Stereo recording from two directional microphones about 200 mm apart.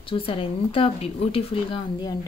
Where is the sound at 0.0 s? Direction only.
25° left (ahead or behind).